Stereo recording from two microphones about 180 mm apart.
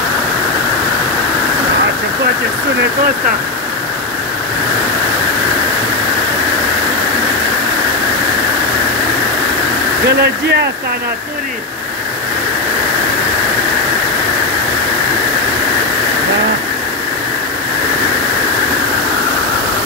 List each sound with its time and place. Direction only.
10.0 s speech: 70° right (ahead or behind)